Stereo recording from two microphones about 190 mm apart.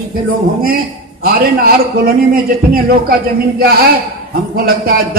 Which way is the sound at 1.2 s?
50° right (ahead or behind).